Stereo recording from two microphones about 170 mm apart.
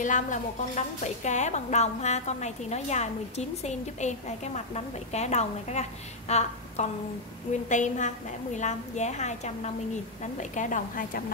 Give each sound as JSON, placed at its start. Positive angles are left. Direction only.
{"t": 0.0, "sound": "a woman's voice", "side_deg": 45}